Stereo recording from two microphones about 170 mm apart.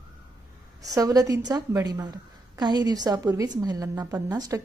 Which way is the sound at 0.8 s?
20° right (ahead or behind).